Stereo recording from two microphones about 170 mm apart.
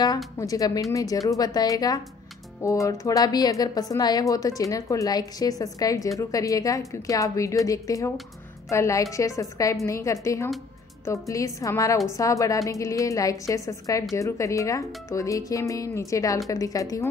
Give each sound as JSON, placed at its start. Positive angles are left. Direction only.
{"t": 0.4, "sound": "a woman's voice", "side_deg": 20}